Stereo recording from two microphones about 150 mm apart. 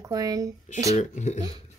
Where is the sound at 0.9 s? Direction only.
50° left (ahead or behind).